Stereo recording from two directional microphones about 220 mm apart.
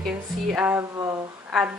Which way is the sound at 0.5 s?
10° right (ahead or behind).